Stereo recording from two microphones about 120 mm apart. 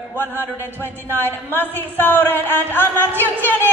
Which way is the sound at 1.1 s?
20° left (ahead or behind).